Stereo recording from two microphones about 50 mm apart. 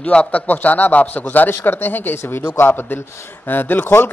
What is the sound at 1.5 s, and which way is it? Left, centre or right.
A man's voice, left.